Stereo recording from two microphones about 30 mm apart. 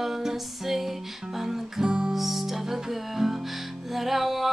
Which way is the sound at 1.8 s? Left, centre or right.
Right.